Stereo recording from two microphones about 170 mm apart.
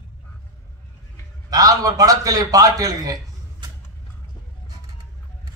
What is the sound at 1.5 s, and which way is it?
A man's voice, 20° right (ahead or behind).